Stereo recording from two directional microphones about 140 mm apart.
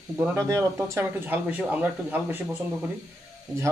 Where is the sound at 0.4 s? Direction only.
20° right (ahead or behind).